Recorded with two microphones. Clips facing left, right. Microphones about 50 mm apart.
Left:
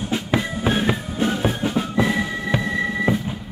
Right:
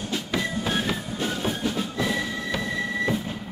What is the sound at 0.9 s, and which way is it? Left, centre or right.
Music, centre.